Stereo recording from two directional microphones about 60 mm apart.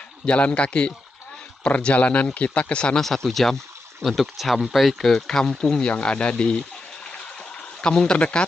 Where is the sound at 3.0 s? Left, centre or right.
Centre.